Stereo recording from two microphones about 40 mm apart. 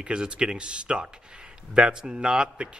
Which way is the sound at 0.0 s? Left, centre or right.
Right.